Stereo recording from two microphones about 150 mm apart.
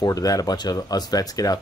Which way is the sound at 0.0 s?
25° left (ahead or behind).